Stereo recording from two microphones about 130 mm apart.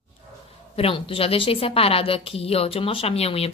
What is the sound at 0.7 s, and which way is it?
A woman's voice, 45° left (ahead or behind).